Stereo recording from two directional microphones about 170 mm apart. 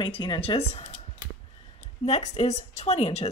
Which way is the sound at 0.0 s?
30° left (ahead or behind).